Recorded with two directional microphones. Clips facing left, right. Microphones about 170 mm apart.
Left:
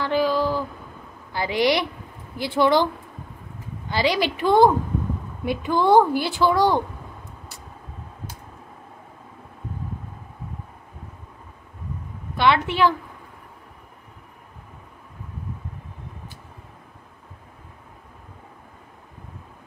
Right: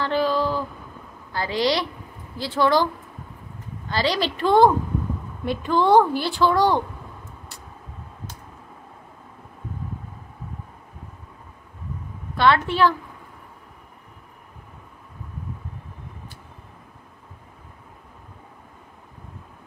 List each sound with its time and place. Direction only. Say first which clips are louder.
0.0 s a sound: left 1 dB; 15° left (ahead or behind)
1.3 s a woman's voice: left 2 dB; 15° left (ahead or behind)
3.9 s a woman's voice: left 1 dB; 15° left (ahead or behind)
12.4 s a woman's voice: right 1 dB; 15° left (ahead or behind)